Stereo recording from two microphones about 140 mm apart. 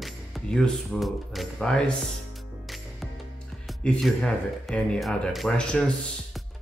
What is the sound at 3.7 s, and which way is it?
Speech, centre (ahead or behind).